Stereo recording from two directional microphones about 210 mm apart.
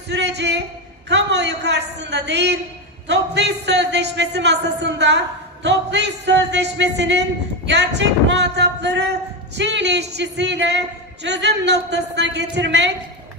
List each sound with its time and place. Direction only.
0.1 s a man's voice: 55° right (ahead or behind)